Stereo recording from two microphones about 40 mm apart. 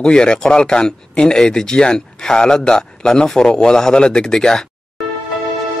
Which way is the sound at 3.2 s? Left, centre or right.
Centre.